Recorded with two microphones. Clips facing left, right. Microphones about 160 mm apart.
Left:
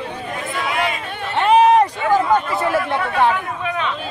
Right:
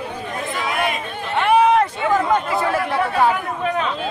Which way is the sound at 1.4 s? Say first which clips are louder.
Left 2 dB; 20° left (ahead or behind).